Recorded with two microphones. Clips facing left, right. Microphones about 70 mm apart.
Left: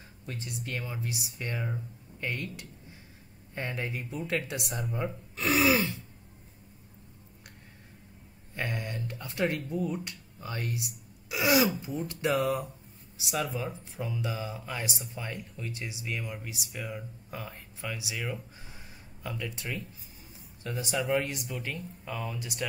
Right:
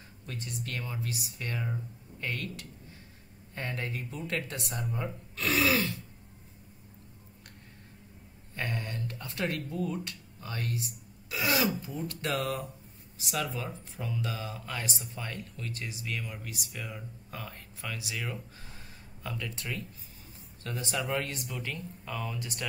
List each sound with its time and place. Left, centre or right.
0.3 s speech: centre
1.7 s speech: centre
2.3 s speech: left
8.5 s speech: left
11.2 s throat clearing: centre
12.1 s speech: centre
21.2 s speech: centre